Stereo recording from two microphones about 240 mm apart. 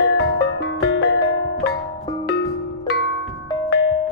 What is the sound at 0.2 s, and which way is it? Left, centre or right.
Music, left.